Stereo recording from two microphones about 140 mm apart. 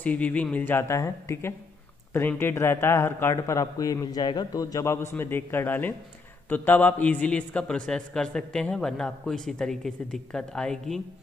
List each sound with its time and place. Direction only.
0.0 s a man's voice: 10° left (ahead or behind)